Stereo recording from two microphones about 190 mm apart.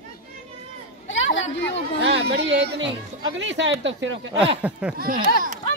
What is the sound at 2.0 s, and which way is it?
Speech, 60° right (ahead or behind).